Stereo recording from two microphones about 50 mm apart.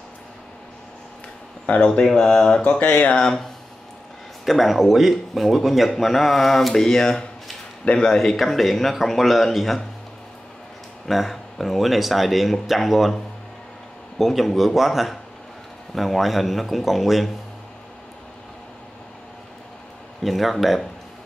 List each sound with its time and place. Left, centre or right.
1.9 s speech: centre
2.8 s speech: left
3.2 s speech: centre
4.5 s speech: centre; by 8.1 s left
8.1 s speech: centre
11.1 s speech: centre
14.1 s speech: centre
20.2 s speech: centre